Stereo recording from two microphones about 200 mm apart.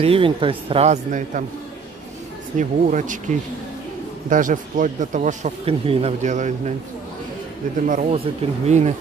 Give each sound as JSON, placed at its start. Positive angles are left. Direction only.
{"t": 0.0, "sound": "speech", "side_deg": -25}
{"t": 2.5, "sound": "a man's voice", "side_deg": -35}
{"t": 7.8, "sound": "a man's voice", "side_deg": -35}